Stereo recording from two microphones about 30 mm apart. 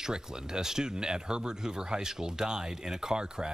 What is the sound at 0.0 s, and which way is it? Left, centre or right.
Speech, right.